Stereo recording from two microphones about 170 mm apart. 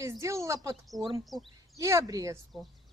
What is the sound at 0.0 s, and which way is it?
A woman's voice, 20° right (ahead or behind).